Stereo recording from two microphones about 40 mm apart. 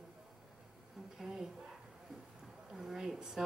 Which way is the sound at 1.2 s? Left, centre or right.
Centre.